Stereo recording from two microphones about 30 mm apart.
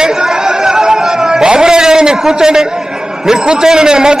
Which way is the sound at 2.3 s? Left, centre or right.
Right.